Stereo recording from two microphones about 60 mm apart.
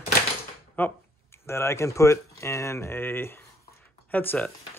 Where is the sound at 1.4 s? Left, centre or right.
Left.